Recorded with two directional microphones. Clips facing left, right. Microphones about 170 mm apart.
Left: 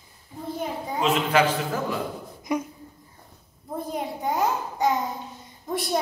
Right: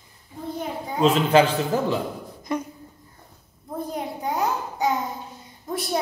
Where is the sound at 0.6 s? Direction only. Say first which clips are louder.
Right 2 dB; centre (ahead or behind).